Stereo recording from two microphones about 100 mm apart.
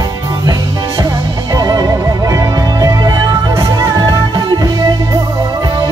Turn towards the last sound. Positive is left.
turn(degrees=-45)  # may be behind; listen again after turning